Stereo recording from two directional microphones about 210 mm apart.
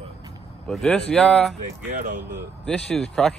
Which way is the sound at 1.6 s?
40° right (ahead or behind).